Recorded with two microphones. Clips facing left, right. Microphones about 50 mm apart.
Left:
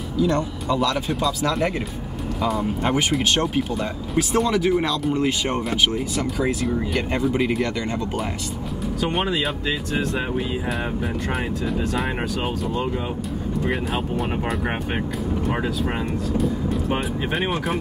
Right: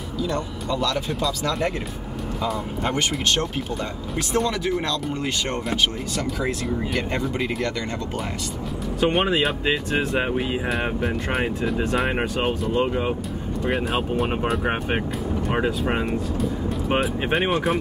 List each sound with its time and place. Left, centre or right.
0.2 s speech: centre
9.7 s speech: right
13.7 s speech: centre
17.3 s speech: centre